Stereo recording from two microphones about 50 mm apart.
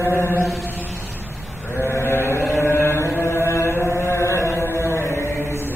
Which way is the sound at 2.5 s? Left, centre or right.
Left.